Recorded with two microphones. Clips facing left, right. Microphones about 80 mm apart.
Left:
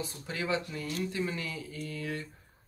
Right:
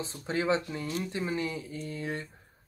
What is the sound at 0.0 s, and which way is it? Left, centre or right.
Speech, right.